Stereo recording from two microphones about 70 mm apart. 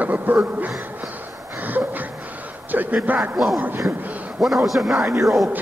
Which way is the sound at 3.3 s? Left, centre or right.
Centre.